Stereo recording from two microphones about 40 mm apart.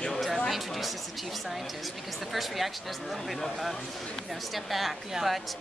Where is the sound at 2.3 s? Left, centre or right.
Centre.